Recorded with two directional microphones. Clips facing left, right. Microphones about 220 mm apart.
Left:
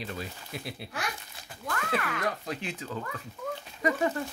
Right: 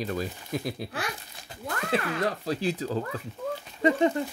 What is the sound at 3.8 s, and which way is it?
Speech, 25° right (ahead or behind).